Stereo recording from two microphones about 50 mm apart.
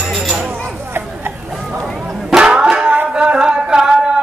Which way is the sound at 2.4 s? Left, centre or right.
Centre.